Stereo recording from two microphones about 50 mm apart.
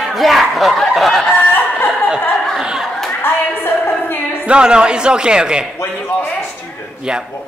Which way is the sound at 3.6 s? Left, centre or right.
Left.